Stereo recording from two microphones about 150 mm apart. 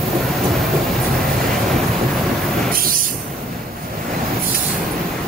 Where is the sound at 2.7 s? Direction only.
70° right (ahead or behind).